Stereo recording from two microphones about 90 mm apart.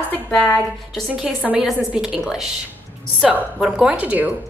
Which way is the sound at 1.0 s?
10° right (ahead or behind).